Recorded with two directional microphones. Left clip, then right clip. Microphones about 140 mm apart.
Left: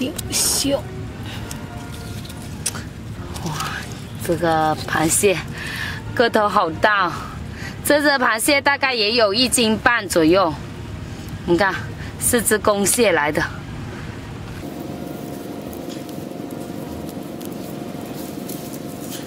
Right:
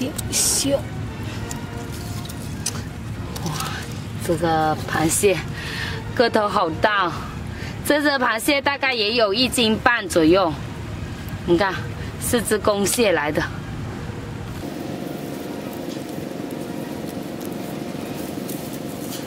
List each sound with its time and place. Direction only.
0.0 s music: 20° left (ahead or behind)
4.4 s a woman's voice: 15° left (ahead or behind)